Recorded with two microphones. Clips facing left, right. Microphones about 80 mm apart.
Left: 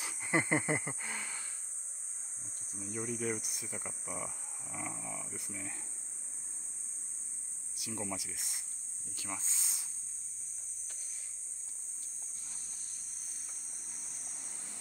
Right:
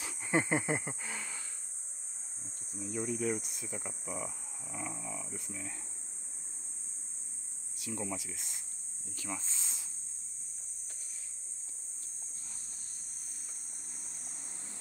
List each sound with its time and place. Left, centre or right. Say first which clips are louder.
0.0 s a sound: right 1 dB; centre
2.8 s speech: right 3 dB; centre
7.7 s speech: right 1 dB; centre
13.9 s vehicle: right 1 dB; right